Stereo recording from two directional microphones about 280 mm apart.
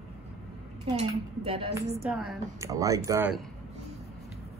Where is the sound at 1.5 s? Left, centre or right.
Right.